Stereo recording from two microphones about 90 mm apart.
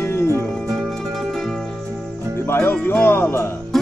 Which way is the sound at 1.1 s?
Centre (ahead or behind).